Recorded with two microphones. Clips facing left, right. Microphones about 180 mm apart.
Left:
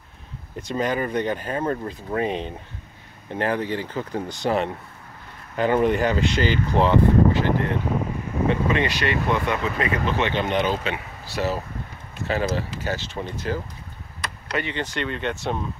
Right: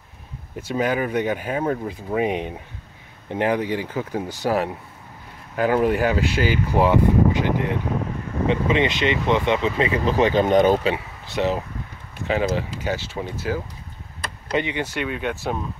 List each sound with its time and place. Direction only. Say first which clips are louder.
0.6 s speech: right 2 dB; 5° right (ahead or behind); by 11.0 s 40° right (ahead or behind)
11.2 s speech: right 3 dB; 20° right (ahead or behind)